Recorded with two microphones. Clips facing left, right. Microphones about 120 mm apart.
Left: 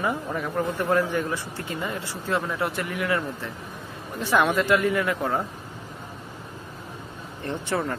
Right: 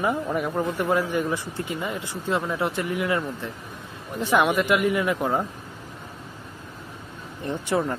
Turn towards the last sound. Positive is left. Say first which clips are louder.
# right 2 dB
turn(degrees=-15)  # may be behind; listen again after turning